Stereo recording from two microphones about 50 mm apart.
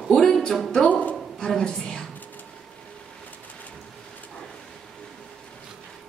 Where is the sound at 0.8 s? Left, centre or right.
Left.